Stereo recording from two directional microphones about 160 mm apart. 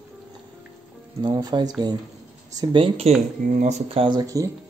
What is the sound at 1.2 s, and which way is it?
Speech, 25° right (ahead or behind).